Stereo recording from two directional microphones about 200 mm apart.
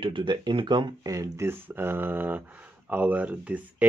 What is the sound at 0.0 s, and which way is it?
Speech, 25° right (ahead or behind).